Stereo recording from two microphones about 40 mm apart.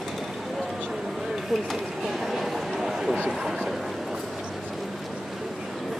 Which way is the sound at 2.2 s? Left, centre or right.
Centre.